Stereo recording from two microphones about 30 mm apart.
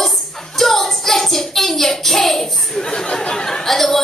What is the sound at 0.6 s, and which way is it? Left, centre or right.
Child singing, centre.